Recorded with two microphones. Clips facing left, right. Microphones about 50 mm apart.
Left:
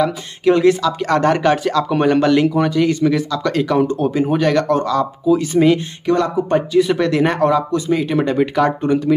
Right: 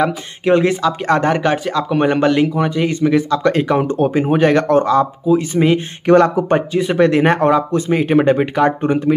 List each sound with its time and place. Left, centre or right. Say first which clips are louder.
0.0 s speech: left 1 dB; right
1.3 s speech: left 1 dB; centre
3.3 s speech: right 3 dB; right
5.2 s speech: even; centre
6.0 s speech: right 5 dB; right
6.5 s speech: left 1 dB; right